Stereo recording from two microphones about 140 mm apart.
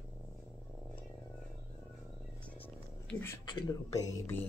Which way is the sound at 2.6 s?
15° left (ahead or behind).